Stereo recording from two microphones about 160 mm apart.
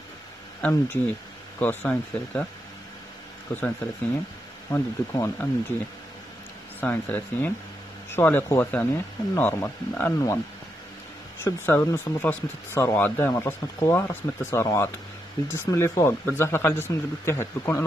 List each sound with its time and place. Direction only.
0.6 s speech: 10° left (ahead or behind)
3.5 s speech: 10° left (ahead or behind)
6.8 s speech: 10° left (ahead or behind)
11.4 s speech: 15° left (ahead or behind)